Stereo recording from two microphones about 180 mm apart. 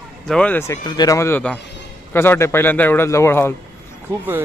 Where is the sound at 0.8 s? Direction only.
20° left (ahead or behind).